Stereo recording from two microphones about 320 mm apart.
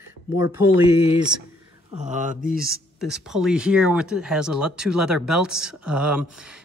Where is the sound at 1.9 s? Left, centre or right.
Right.